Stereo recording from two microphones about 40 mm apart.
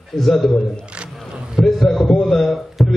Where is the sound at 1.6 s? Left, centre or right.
Centre.